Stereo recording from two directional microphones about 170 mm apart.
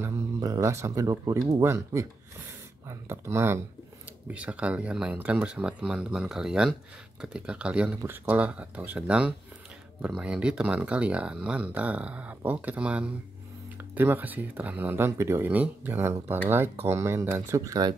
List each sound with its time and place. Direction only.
0.0 s speech: 20° right (ahead or behind)